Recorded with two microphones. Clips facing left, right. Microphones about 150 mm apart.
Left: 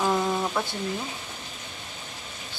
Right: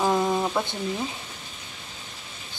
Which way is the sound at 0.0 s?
15° right (ahead or behind).